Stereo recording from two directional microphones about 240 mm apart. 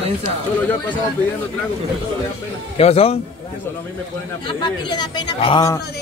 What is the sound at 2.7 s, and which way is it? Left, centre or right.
Speech, left.